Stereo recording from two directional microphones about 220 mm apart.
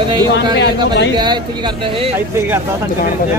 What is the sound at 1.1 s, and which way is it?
Speech, 20° right (ahead or behind).